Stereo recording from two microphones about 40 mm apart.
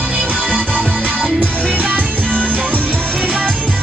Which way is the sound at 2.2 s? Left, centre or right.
Left.